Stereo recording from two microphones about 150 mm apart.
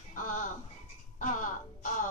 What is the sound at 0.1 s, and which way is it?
Sheep, 60° left (ahead or behind).